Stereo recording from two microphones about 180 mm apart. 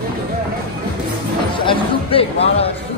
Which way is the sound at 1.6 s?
30° left (ahead or behind).